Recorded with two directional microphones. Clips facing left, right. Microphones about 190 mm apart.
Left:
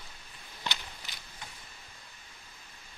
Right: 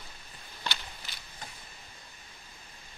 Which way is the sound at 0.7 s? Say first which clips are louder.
Even; 20° left (ahead or behind).